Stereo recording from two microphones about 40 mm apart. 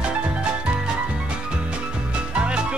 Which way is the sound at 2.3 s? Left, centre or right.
Right.